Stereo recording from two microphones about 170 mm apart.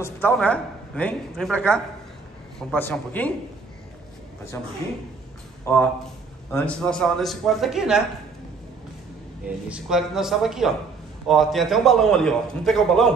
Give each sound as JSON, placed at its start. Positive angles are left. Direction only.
{"t": 0.3, "sound": "speech", "side_deg": 5}
{"t": 5.7, "sound": "a man's voice", "side_deg": 15}
{"t": 9.7, "sound": "a man's voice", "side_deg": -5}